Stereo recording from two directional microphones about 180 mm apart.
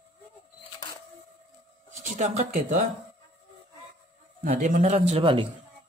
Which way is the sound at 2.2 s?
40° right (ahead or behind).